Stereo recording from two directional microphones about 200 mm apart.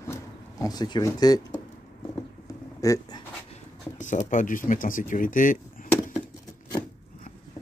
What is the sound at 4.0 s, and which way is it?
Speech, 40° left (ahead or behind).